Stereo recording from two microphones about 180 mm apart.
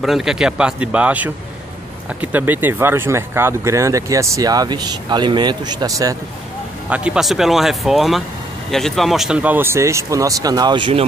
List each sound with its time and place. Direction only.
0.0 s a man's voice: centre (ahead or behind); by 6.1 s 20° right (ahead or behind)
6.9 s a man's voice: 5° right (ahead or behind); by 11.1 s 30° right (ahead or behind)